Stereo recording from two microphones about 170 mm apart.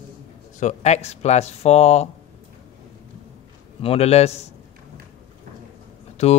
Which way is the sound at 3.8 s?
35° left (ahead or behind).